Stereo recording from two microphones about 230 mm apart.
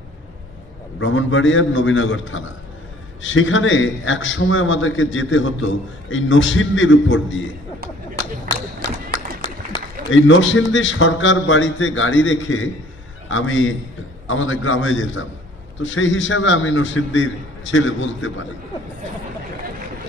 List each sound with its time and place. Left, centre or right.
0.9 s a man's voice: left
8.8 s run: centre
10.0 s a man's voice: left